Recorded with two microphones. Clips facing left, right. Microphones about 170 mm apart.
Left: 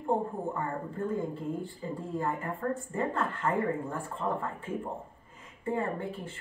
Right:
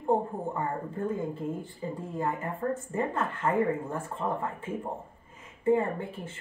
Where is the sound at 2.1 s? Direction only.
20° right (ahead or behind).